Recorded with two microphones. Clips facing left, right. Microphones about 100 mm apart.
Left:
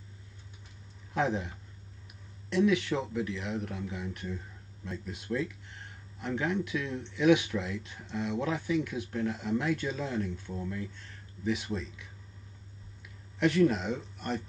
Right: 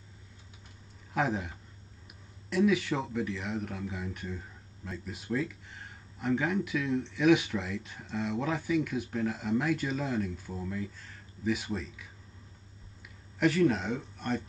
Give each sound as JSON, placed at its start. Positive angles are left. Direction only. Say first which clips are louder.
{"t": 1.1, "sound": "speech", "louder": "even", "side_deg": 0}
{"t": 2.5, "sound": "speech", "louder": "even", "side_deg": 0}
{"t": 13.4, "sound": "speech", "louder": "even", "side_deg": 0}